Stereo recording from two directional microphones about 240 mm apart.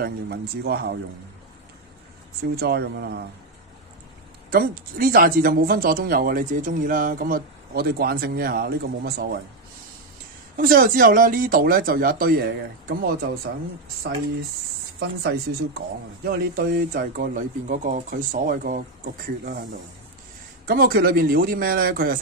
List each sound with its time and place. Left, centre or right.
0.0 s speech: right
2.5 s speech: right
4.5 s speech: right
10.5 s speech: right
16.3 s speech: right